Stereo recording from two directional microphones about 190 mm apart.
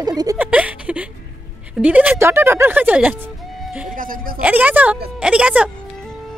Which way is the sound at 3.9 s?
45° right (ahead or behind).